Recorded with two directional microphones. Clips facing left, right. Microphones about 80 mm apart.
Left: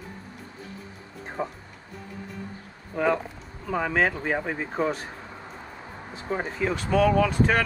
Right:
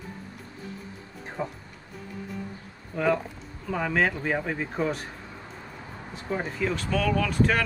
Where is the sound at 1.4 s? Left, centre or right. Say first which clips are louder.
Left 1 dB; centre.